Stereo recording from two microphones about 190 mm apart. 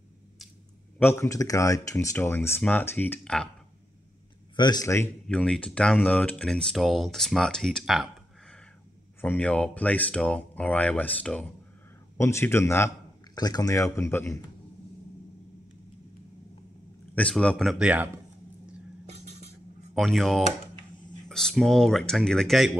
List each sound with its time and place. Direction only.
0.9 s speech: 10° left (ahead or behind)
4.6 s speech: 20° left (ahead or behind)
17.1 s speech: 5° left (ahead or behind); by 18.2 s 10° right (ahead or behind)
19.0 s cutlery: 35° right (ahead or behind)
19.9 s speech: centre (ahead or behind)